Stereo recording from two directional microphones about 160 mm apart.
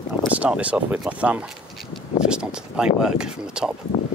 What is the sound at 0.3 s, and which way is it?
Speech, 10° right (ahead or behind).